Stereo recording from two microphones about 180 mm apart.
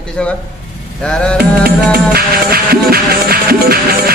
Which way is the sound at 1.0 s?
5° left (ahead or behind).